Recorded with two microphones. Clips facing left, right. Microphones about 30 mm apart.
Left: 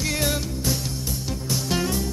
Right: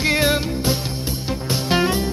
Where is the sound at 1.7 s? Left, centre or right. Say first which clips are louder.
Right 7 dB; right.